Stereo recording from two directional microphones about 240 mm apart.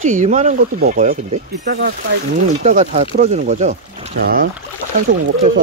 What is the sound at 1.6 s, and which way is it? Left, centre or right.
Speech, right.